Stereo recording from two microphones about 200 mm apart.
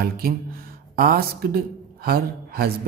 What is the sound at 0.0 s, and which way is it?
Speech, 45° right (ahead or behind).